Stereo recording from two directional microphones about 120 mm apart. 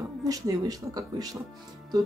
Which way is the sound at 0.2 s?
30° right (ahead or behind).